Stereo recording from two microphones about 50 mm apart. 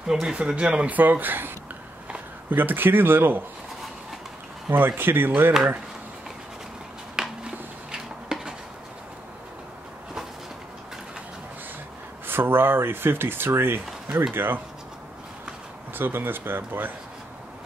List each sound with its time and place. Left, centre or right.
0.1 s speech: centre
0.9 s speech: right
2.5 s speech: right
4.6 s speech: right
7.2 s a sound: centre
12.3 s speech: right
15.9 s speech: right